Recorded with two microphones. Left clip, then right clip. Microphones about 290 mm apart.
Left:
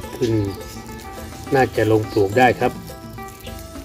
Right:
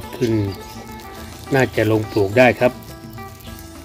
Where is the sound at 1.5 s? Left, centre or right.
Right.